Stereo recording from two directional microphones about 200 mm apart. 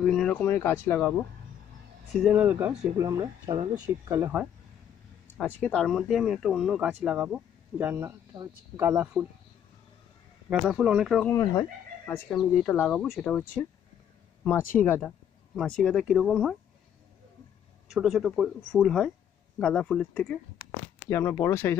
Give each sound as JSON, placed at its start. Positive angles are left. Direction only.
{"t": 0.0, "sound": "speech", "side_deg": 5}
{"t": 2.2, "sound": "speech", "side_deg": -10}
{"t": 3.0, "sound": "speech", "side_deg": -20}
{"t": 5.4, "sound": "speech", "side_deg": 5}
{"t": 10.5, "sound": "speech", "side_deg": -5}
{"t": 11.2, "sound": "speech", "side_deg": 15}
{"t": 17.8, "sound": "speech", "side_deg": 0}